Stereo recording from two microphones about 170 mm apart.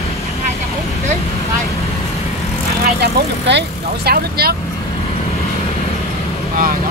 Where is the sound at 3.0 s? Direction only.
80° right; by 4.6 s 65° right (ahead or behind).